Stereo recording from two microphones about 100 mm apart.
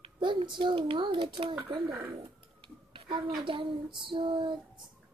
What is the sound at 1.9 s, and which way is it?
Speech, 30° right (ahead or behind).